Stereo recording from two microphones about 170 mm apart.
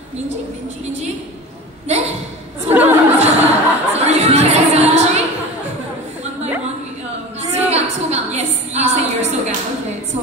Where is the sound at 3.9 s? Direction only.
40° right (ahead or behind).